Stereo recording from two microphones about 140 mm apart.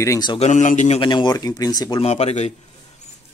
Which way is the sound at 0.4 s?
60° left (ahead or behind).